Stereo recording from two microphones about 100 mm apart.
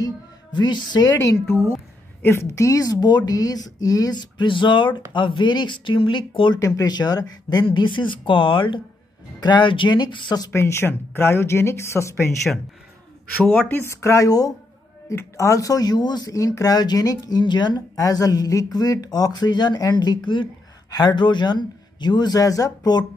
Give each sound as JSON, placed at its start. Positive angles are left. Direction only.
{"t": 0.0, "sound": "a woman's voice", "side_deg": 50}
{"t": 2.2, "sound": "speech", "side_deg": 25}
{"t": 6.6, "sound": "speech", "side_deg": 40}
{"t": 7.6, "sound": "speech", "side_deg": 55}
{"t": 10.5, "sound": "speech", "side_deg": 25}
{"t": 13.4, "sound": "speech", "side_deg": 15}